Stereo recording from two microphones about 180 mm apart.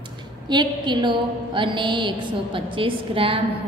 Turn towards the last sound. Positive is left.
turn(degrees=-30)  # may be behind; listen again after turning